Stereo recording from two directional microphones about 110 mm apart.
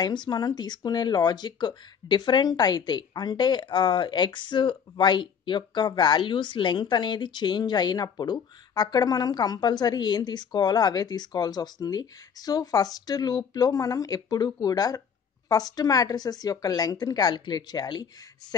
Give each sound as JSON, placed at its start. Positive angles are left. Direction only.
{"t": 0.0, "sound": "speech", "side_deg": 40}